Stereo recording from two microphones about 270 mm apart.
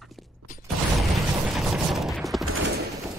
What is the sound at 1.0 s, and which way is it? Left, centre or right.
Mechanisms, centre.